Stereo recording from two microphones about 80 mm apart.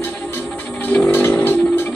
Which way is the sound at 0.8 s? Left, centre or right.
Centre.